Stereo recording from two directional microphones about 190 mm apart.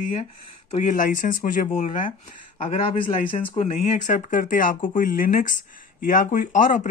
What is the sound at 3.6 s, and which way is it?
Speech, 40° left (ahead or behind).